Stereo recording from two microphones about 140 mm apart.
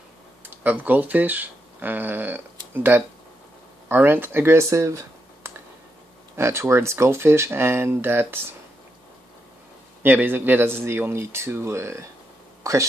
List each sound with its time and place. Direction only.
0.4 s speech: 10° right (ahead or behind)
10.0 s speech: 15° right (ahead or behind)
12.6 s a sound: 25° right (ahead or behind)